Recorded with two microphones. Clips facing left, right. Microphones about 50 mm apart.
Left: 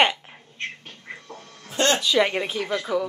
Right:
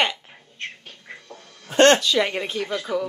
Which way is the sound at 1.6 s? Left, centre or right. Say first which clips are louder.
Right 7 dB; right.